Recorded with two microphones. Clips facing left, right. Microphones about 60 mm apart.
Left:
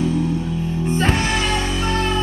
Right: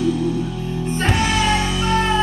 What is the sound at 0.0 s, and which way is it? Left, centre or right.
Music, left.